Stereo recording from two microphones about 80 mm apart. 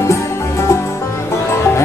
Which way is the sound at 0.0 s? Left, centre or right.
Left.